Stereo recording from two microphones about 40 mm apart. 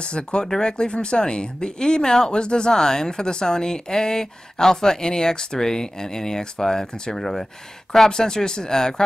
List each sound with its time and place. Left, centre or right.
0.0 s speech: left